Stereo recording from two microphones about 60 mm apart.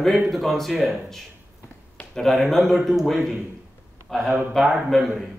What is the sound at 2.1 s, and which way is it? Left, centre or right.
Speech, centre.